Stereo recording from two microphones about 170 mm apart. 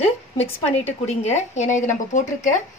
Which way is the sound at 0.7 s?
40° left (ahead or behind).